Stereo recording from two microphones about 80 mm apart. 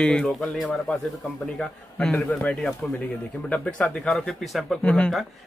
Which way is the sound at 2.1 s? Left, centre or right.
Left.